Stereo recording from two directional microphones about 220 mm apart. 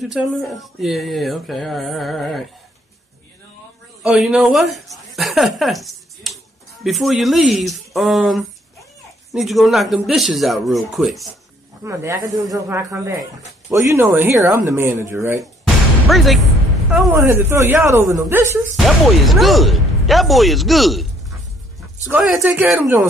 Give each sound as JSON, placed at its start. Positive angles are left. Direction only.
{"t": 0.0, "sound": "speech", "side_deg": 0}
{"t": 4.0, "sound": "a woman's voice", "side_deg": -5}
{"t": 11.8, "sound": "speech", "side_deg": -10}
{"t": 16.1, "sound": "speech", "side_deg": 0}
{"t": 18.9, "sound": "speech", "side_deg": 0}
{"t": 22.1, "sound": "speech", "side_deg": -5}